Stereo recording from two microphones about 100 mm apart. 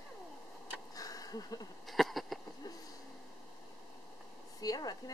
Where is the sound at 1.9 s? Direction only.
Centre (ahead or behind).